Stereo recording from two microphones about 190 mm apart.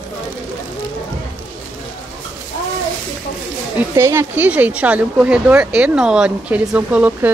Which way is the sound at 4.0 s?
15° right (ahead or behind).